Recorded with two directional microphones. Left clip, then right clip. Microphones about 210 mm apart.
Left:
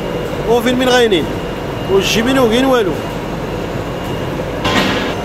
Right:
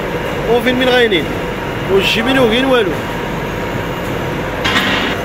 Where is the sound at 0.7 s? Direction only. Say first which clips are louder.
Even; 10° left (ahead or behind).